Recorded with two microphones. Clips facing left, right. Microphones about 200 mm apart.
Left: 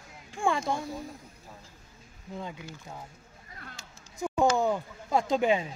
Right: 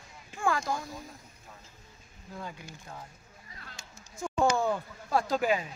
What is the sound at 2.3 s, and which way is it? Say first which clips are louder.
Speech: left 3 dB; 20° left (ahead or behind).